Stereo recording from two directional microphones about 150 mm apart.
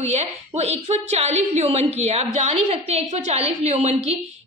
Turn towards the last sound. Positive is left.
turn(degrees=-45)  # may be behind; listen again after turning